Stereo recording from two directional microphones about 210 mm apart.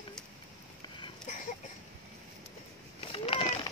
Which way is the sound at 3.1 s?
25° left (ahead or behind).